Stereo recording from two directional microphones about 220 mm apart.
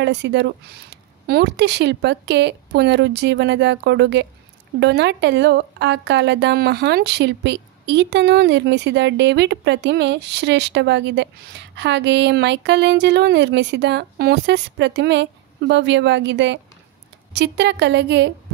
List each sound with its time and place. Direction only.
0.0 s a woman's voice: 50° right (ahead or behind)